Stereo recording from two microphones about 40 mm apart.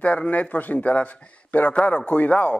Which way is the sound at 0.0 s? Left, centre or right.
Left.